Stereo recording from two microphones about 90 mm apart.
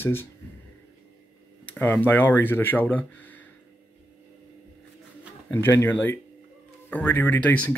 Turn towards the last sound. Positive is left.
turn(degrees=15)  # may be behind; listen again after turning